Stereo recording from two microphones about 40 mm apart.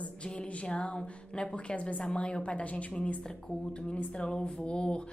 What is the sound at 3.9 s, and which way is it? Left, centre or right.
A woman's voice, left.